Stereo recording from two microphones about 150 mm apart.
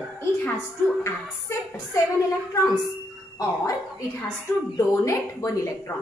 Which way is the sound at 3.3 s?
20° left (ahead or behind).